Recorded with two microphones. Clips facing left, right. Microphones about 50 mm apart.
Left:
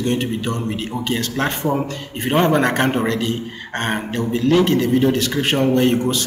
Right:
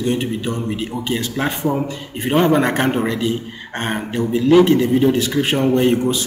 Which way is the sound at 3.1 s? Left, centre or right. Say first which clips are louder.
Right 1 dB; centre.